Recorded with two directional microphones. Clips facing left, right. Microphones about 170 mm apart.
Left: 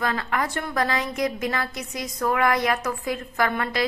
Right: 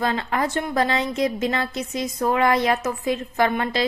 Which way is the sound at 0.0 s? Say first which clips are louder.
Right 3 dB; 25° right (ahead or behind).